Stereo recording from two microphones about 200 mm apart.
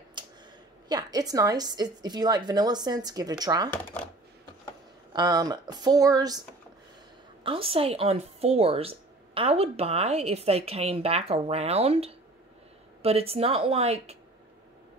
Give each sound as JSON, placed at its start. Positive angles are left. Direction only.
{"t": 0.2, "sound": "a sound", "side_deg": -25}
{"t": 0.8, "sound": "a woman's voice", "side_deg": -20}
{"t": 5.1, "sound": "a woman's voice", "side_deg": -20}
{"t": 7.4, "sound": "a woman's voice", "side_deg": -25}